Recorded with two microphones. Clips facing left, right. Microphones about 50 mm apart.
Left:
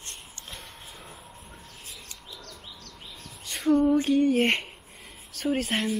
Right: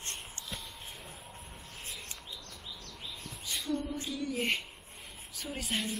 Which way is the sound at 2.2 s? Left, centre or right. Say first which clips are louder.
Left 2 dB; left.